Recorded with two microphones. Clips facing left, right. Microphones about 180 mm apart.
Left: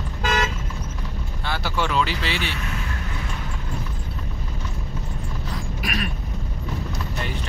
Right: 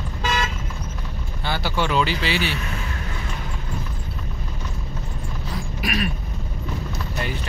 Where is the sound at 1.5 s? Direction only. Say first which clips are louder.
Right 2 dB; centre (ahead or behind).